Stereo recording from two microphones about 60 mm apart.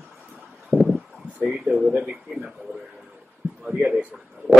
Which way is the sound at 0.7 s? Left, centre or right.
Centre.